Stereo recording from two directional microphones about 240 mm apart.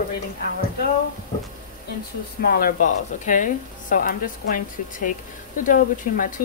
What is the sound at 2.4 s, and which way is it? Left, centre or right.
Speech, left.